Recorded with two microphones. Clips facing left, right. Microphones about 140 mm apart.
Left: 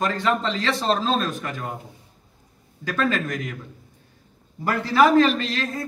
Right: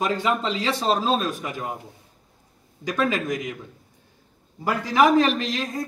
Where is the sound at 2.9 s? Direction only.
15° right (ahead or behind).